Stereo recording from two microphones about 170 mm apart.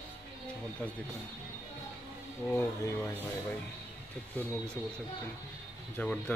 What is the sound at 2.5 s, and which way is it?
Speech, 15° left (ahead or behind).